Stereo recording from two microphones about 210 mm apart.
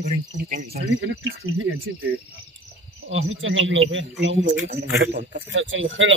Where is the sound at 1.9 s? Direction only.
65° right (ahead or behind).